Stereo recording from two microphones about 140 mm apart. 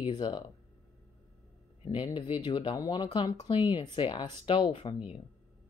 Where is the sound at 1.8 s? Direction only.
35° left (ahead or behind).